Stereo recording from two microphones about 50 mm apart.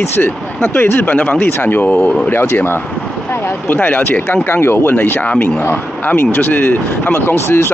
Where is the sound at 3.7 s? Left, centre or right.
Left.